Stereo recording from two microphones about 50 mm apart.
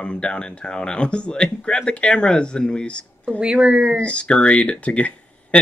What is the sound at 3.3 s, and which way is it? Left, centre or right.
Speech, right.